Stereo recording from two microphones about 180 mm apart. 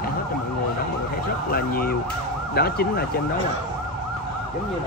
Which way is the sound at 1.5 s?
55° left (ahead or behind).